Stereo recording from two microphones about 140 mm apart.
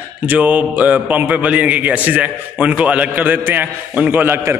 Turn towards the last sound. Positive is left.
turn(degrees=-15)  # may be behind; listen again after turning